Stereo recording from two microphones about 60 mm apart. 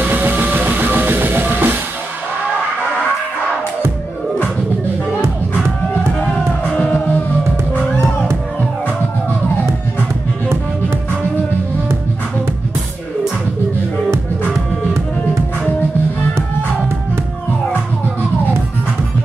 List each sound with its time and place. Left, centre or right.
0.0 s music: right